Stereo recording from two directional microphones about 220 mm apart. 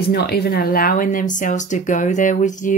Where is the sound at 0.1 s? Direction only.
50° left (ahead or behind).